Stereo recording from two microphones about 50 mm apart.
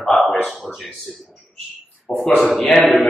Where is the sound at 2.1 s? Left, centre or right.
Left.